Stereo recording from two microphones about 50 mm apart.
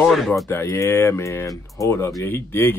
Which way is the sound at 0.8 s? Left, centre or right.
Left.